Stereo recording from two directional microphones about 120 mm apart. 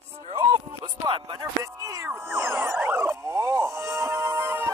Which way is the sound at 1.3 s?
30° right (ahead or behind).